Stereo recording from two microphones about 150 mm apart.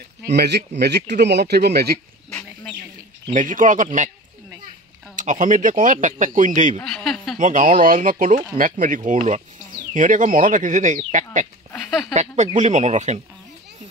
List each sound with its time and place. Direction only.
0.4 s speech: 90° right
3.3 s speech: 60° right (ahead or behind)
5.1 s speech: 55° right (ahead or behind)